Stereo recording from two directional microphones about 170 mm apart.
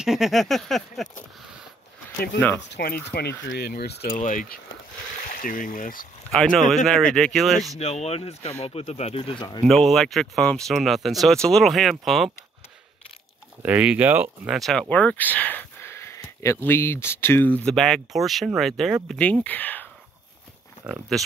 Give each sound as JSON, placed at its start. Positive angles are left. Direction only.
{"t": 0.0, "sound": "speech", "side_deg": 0}
{"t": 2.7, "sound": "speech", "side_deg": 65}
{"t": 4.2, "sound": "speech", "side_deg": 50}
{"t": 6.3, "sound": "speech", "side_deg": 5}
{"t": 7.8, "sound": "speech", "side_deg": 40}
{"t": 9.7, "sound": "speech", "side_deg": 0}
{"t": 13.6, "sound": "speech", "side_deg": -10}